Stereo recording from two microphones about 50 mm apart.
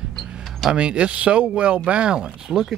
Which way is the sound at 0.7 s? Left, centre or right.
Right.